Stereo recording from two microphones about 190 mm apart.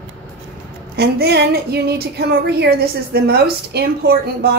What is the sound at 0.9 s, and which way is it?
A woman's voice, 60° right (ahead or behind).